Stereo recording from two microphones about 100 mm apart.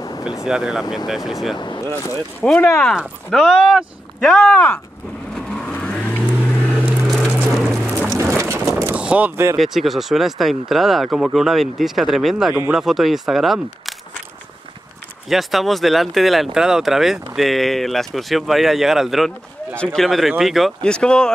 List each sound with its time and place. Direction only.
0.2 s speech: 5° right (ahead or behind)
1.9 s speech: 30° left (ahead or behind)
2.4 s speech: 5° left (ahead or behind)
5.3 s vehicle: 5° left (ahead or behind)
6.4 s a sound: 15° left (ahead or behind)
7.5 s music: centre (ahead or behind)
7.8 s music: 15° right (ahead or behind)
8.2 s boat: 30° right (ahead or behind)
8.9 s artillery fire: 15° right (ahead or behind)
9.6 s speech: centre (ahead or behind)
15.2 s speech: centre (ahead or behind)
20.8 s speech: 10° left (ahead or behind)